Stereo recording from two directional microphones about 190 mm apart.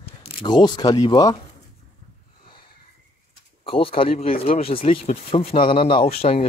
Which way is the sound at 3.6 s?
30° left (ahead or behind).